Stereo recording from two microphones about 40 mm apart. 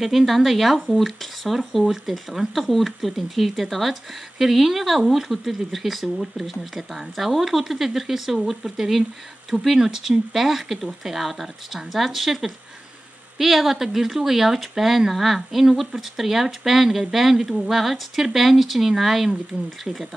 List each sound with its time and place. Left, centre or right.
0.2 s speech: centre